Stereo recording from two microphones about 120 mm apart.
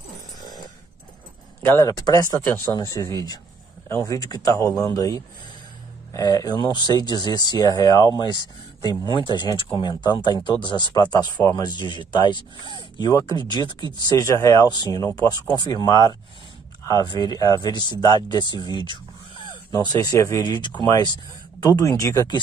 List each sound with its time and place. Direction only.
1.6 s speech: 15° left (ahead or behind)
1.9 s speech: 30° left (ahead or behind)
13.1 s speech: 25° left (ahead or behind)
13.5 s speech: 35° left (ahead or behind)
20.6 s speech: 35° left (ahead or behind)